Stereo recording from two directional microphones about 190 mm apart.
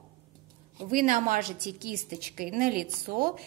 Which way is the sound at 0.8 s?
45° right (ahead or behind).